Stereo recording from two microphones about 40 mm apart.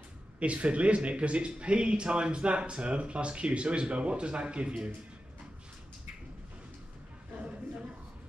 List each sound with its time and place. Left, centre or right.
0.4 s speech: right